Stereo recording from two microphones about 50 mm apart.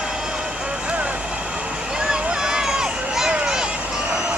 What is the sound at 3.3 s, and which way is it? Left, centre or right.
Vehicle, centre.